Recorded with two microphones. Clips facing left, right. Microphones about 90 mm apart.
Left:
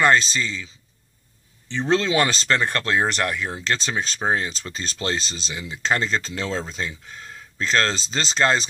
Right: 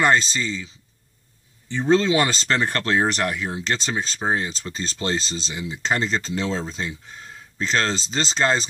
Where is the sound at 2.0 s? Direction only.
25° right (ahead or behind).